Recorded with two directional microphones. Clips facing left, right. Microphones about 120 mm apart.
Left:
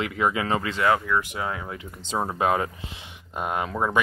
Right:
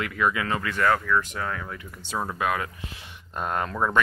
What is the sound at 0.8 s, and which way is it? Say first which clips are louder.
Speech: even; 10° left (ahead or behind).